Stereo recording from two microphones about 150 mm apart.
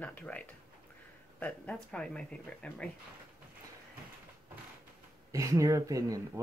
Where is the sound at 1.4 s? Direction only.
5° left (ahead or behind).